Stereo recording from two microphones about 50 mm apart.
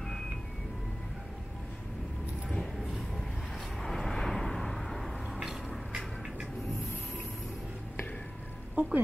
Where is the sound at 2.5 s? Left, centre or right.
Centre.